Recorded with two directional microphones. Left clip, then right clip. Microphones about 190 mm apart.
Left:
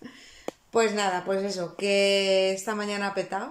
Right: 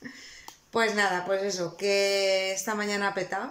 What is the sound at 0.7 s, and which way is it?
Speech, 10° left (ahead or behind).